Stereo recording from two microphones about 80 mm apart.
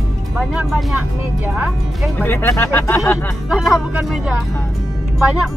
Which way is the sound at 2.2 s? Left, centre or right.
Left.